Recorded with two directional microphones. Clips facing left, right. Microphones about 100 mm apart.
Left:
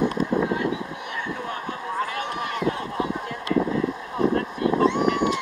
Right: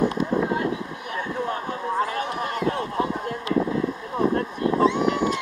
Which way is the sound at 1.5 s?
35° right (ahead or behind).